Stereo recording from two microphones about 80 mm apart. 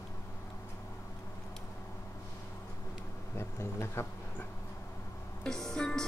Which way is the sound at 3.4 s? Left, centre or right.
Left.